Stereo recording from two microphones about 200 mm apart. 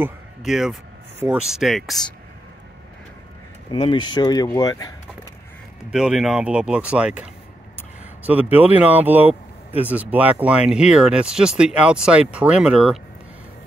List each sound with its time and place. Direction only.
0.5 s speech: centre (ahead or behind)
3.7 s speech: 25° left (ahead or behind)
5.9 s speech: 5° right (ahead or behind)